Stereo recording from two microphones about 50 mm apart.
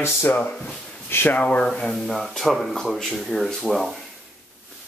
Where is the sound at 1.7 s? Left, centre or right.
Centre.